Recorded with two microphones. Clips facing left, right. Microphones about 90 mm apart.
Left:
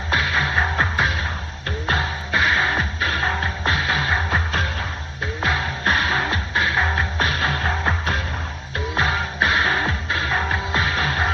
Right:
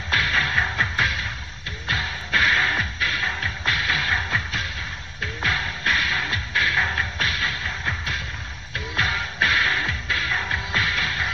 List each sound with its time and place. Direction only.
0.1 s music: 20° left (ahead or behind)
0.7 s music: 30° left (ahead or behind)
2.3 s music: 20° left (ahead or behind)
3.0 s music: 40° left (ahead or behind)
8.7 s music: 30° left (ahead or behind)